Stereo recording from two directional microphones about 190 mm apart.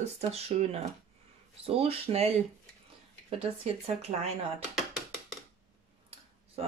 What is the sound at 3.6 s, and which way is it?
Speech, 35° right (ahead or behind).